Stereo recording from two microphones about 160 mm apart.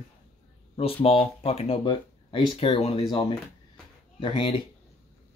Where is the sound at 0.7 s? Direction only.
35° left (ahead or behind).